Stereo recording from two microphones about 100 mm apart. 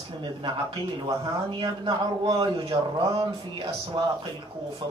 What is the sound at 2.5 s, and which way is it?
Speech, 60° right (ahead or behind).